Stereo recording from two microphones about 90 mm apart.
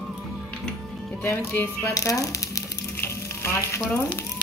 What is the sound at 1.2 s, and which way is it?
Speech, 25° left (ahead or behind).